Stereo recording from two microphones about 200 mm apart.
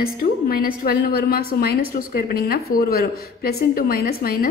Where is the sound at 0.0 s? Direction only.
50° left (ahead or behind).